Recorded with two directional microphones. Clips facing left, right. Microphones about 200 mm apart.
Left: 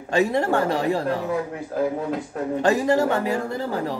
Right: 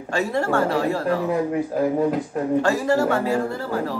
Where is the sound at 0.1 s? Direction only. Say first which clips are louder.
Left 2 dB; 20° left (ahead or behind).